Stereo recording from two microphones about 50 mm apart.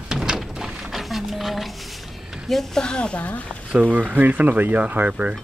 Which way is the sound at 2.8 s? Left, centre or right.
Centre.